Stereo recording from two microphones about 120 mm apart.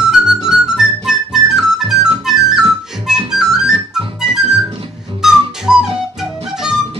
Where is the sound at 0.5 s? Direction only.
5° right (ahead or behind).